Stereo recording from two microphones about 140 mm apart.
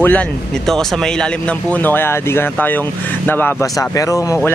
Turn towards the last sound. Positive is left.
turn(degrees=25)  # may be behind; listen again after turning